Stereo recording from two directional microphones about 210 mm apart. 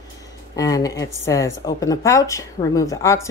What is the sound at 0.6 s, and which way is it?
Speech, 15° left (ahead or behind).